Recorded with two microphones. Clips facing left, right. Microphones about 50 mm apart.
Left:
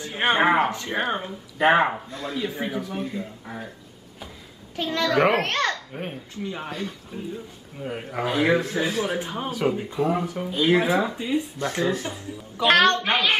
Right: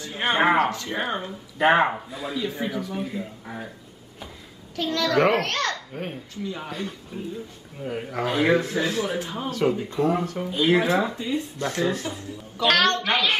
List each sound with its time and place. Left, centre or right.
0.0 s speech: centre
0.4 s speech: centre
0.7 s a child's voice: centre
2.4 s a child's voice: centre
3.0 s speech: centre
5.0 s a child's voice: centre
5.9 s a child's voice: centre
6.4 s a child's voice: centre
6.7 s speech: centre
11.1 s a child's voice: centre
11.8 s speech: centre
12.5 s a woman's voice: left